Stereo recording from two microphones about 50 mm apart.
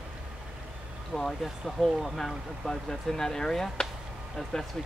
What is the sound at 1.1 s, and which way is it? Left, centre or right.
Speech, centre.